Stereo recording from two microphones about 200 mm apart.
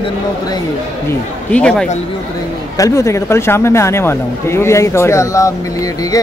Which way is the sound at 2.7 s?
15° left (ahead or behind).